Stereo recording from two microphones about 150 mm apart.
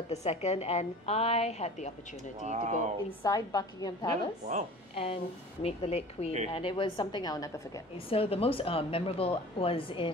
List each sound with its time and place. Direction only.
0.1 s a woman's voice: 45° left (ahead or behind)
2.4 s speech: 50° right (ahead or behind)
3.3 s a woman's voice: 25° left (ahead or behind)
4.9 s a woman's voice: 40° left (ahead or behind); by 7.8 s 20° left (ahead or behind)
8.1 s a woman's voice: 40° left (ahead or behind)